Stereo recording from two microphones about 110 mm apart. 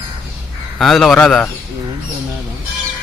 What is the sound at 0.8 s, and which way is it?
Speech, centre (ahead or behind).